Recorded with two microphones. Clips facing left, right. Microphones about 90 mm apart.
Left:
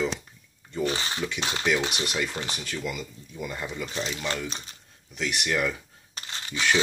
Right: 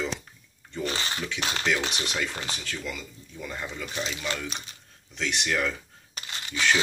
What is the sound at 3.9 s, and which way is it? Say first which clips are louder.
Speech: even; 35° left (ahead or behind).